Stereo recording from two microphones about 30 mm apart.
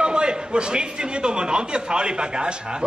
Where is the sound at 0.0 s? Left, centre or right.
Right.